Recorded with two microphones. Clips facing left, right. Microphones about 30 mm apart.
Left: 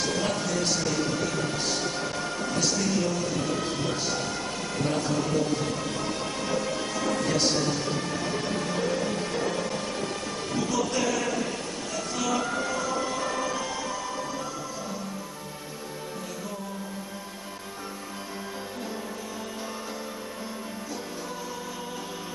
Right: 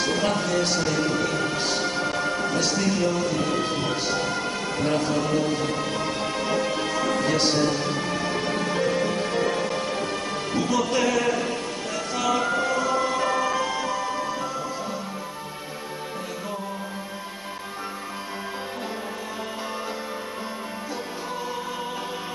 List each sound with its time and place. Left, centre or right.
0.0 s music: right